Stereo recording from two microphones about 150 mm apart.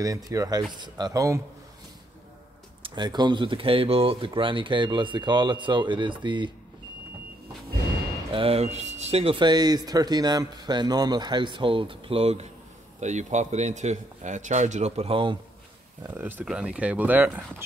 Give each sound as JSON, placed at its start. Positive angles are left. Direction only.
{"t": 0.0, "sound": "speech", "side_deg": -25}
{"t": 2.8, "sound": "speech", "side_deg": -30}
{"t": 8.3, "sound": "speech", "side_deg": -40}
{"t": 16.0, "sound": "speech", "side_deg": -15}